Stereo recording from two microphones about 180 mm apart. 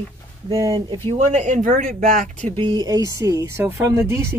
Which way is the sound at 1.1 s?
40° right (ahead or behind).